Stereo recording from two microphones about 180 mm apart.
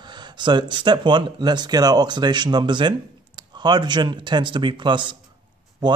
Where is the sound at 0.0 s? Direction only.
25° right (ahead or behind).